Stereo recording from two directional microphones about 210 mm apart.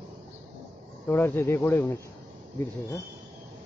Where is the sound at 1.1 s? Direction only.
10° left (ahead or behind).